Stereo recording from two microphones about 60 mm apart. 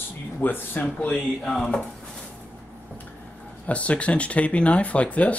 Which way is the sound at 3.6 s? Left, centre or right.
Left.